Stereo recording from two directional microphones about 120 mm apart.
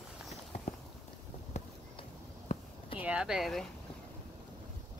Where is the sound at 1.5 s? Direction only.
70° left (ahead or behind).